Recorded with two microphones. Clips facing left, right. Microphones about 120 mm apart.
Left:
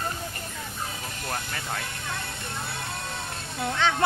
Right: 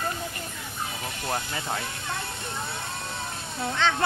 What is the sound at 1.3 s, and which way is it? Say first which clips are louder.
Speech: right 3 dB; 20° right (ahead or behind).